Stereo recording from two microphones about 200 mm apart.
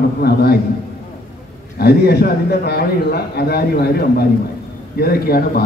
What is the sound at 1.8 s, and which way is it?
A man's voice, 50° left (ahead or behind).